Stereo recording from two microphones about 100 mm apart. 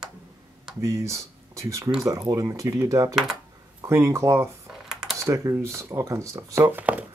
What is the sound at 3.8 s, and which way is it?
Speech, 30° right (ahead or behind).